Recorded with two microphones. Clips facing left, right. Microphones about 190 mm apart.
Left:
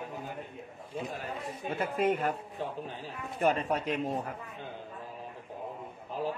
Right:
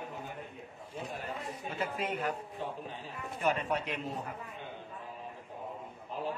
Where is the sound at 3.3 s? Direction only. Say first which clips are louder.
Left 3 dB; 45° left (ahead or behind).